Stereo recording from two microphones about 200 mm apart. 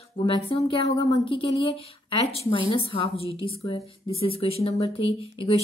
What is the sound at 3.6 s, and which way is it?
Speech, 15° left (ahead or behind).